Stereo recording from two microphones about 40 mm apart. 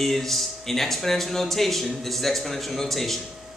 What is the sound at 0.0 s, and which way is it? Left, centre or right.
A man's voice, centre.